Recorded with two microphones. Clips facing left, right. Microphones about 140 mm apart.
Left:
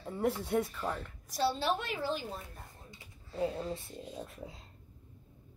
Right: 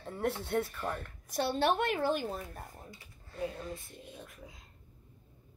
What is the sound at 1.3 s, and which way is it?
A woman's voice, 60° right (ahead or behind).